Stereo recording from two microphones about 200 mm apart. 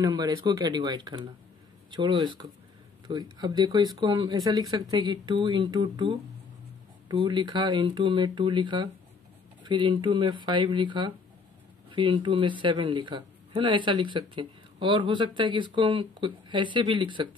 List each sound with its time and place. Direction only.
0.0 s speech: 20° right (ahead or behind)